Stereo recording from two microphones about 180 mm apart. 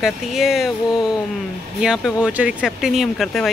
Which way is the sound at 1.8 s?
5° right (ahead or behind).